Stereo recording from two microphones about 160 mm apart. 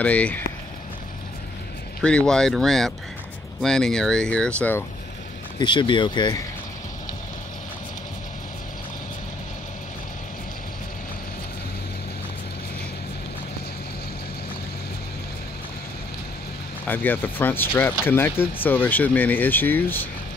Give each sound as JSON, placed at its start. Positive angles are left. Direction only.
{"t": 0.0, "sound": "speech", "side_deg": 10}
{"t": 2.0, "sound": "speech", "side_deg": 5}
{"t": 5.6, "sound": "speech", "side_deg": 30}
{"t": 16.8, "sound": "speech", "side_deg": 10}